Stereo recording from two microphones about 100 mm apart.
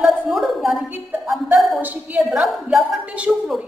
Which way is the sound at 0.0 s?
5° right (ahead or behind).